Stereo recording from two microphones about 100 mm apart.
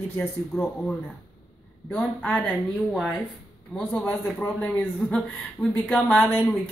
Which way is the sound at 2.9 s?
Centre (ahead or behind).